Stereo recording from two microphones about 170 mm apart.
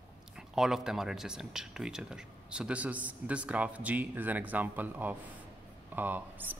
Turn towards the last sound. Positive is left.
turn(degrees=-10)  # may be behind; listen again after turning